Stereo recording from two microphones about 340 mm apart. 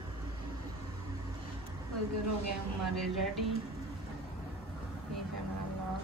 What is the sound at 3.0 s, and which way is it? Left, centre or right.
Speech, centre.